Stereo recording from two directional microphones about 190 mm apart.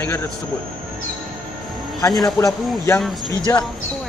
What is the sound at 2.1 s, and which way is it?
Speech, centre (ahead or behind).